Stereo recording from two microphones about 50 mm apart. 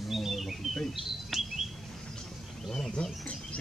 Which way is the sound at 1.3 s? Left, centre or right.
Centre.